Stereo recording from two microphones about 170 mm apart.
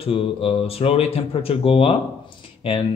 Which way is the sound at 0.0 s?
35° left (ahead or behind).